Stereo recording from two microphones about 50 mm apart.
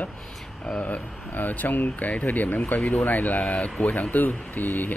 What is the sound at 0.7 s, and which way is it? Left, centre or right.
Speech, left.